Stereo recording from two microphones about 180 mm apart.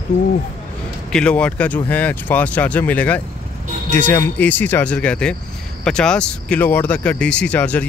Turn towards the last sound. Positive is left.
turn(degrees=5)  # may be behind; listen again after turning